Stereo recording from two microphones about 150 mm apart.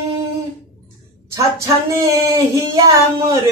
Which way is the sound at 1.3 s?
20° right (ahead or behind).